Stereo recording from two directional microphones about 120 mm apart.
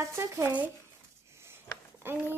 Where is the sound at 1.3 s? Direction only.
20° right (ahead or behind).